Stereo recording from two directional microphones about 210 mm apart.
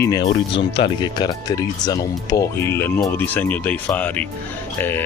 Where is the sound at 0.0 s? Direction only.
20° left (ahead or behind).